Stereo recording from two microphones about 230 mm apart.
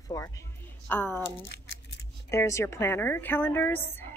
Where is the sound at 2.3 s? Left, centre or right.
Centre.